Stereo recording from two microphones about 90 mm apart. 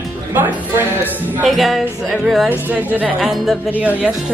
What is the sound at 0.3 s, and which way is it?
Speech, 20° right (ahead or behind).